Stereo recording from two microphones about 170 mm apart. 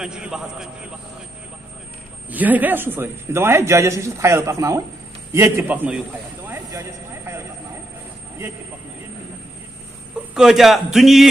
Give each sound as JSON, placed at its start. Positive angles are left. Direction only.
{"t": 0.0, "sound": "a man's voice", "side_deg": -5}
{"t": 2.3, "sound": "a man's voice", "side_deg": -10}
{"t": 6.7, "sound": "a sound", "side_deg": -20}
{"t": 10.3, "sound": "a man's voice", "side_deg": 0}